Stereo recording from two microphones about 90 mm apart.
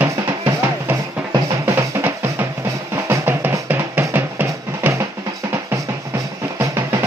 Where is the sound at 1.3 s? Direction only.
35° right (ahead or behind).